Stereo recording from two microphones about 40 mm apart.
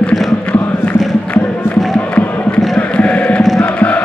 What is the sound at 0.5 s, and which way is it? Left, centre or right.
Music, left.